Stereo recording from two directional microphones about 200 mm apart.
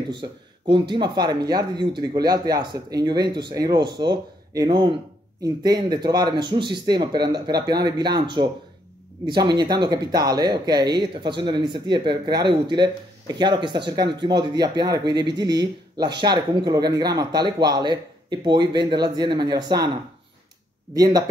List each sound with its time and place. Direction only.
0.1 s speech: 25° right (ahead or behind)
20.9 s speech: 20° right (ahead or behind)